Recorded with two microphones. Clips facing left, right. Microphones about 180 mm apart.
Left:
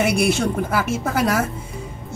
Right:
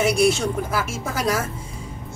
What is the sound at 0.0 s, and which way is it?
Speech, 60° left (ahead or behind).